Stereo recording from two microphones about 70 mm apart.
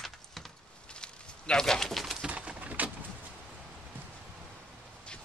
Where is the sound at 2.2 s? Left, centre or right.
Centre.